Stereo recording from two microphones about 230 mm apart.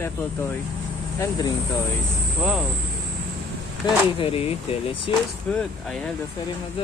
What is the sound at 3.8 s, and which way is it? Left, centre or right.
Speech, centre.